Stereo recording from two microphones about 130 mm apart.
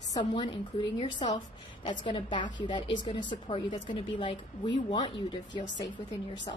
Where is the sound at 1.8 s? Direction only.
35° left (ahead or behind).